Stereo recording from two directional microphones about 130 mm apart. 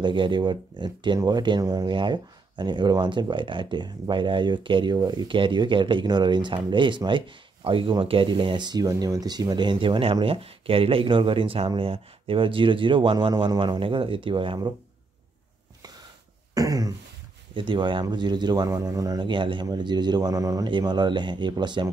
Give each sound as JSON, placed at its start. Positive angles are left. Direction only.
{"t": 0.0, "sound": "speech", "side_deg": -40}
{"t": 16.5, "sound": "throat clearing", "side_deg": -25}
{"t": 17.6, "sound": "speech", "side_deg": -40}